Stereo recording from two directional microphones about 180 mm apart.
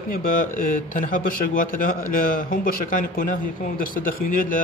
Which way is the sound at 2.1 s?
50° left (ahead or behind).